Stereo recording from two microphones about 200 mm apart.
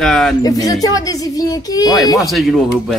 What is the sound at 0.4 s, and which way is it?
Speech, 20° left (ahead or behind).